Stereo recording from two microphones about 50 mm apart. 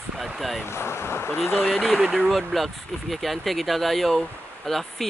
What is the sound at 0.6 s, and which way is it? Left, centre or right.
Speech, left.